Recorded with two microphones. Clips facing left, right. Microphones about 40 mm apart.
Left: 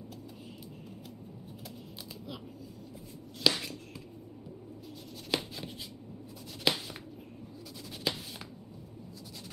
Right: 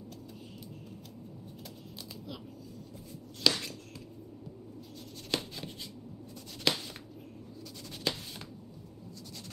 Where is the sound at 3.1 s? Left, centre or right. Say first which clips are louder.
Left 1 dB; centre.